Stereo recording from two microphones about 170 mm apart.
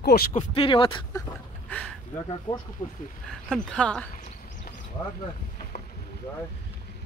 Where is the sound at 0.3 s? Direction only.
35° left (ahead or behind).